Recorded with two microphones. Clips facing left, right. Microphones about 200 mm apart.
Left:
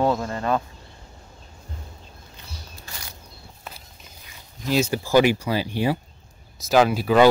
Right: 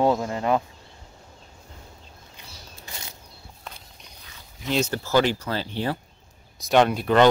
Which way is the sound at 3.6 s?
5° left (ahead or behind).